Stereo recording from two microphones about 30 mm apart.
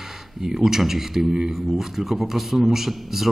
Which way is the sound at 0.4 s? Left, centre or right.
Centre.